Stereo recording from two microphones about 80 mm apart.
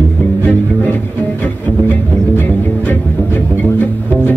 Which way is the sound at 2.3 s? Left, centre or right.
Left.